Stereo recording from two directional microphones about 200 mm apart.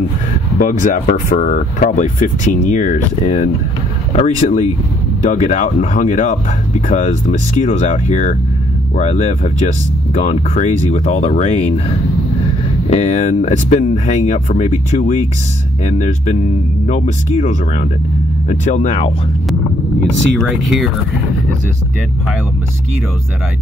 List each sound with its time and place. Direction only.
0.6 s speech: 40° left (ahead or behind)
12.9 s speech: 35° left (ahead or behind)